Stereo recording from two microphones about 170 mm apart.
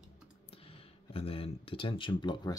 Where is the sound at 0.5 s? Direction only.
35° left (ahead or behind).